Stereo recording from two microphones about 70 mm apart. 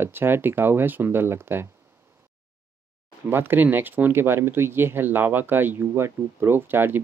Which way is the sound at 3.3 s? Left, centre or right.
Right.